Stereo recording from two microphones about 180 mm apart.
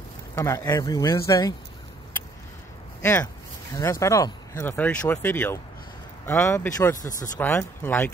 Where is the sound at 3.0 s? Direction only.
15° left (ahead or behind).